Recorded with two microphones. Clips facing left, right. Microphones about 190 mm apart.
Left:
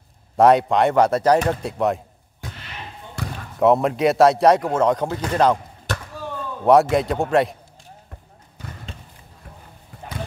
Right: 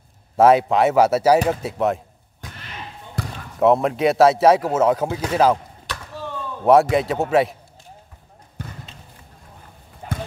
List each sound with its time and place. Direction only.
0.4 s a man's voice: centre (ahead or behind)
3.5 s a man's voice: centre (ahead or behind)
5.9 s slam: 50° left (ahead or behind)
6.6 s a man's voice: centre (ahead or behind)